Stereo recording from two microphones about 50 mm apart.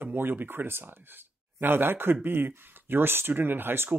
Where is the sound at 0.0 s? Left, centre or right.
Right.